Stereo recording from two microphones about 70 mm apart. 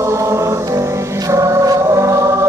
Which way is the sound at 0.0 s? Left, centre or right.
Right.